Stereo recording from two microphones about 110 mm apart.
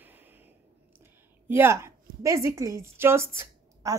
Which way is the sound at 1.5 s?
25° right (ahead or behind).